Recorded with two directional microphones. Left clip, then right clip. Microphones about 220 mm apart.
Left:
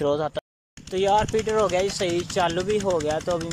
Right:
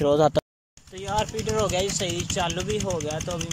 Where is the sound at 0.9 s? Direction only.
55° left (ahead or behind).